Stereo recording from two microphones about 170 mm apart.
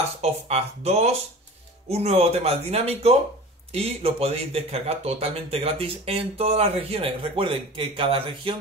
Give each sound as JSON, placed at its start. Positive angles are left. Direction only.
{"t": 0.2, "sound": "speech", "side_deg": -35}